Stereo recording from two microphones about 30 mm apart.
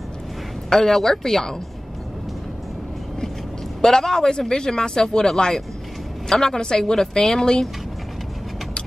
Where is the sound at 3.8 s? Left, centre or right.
Centre.